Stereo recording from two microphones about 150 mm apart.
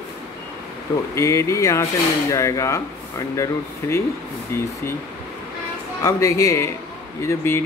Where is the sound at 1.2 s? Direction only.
20° left (ahead or behind).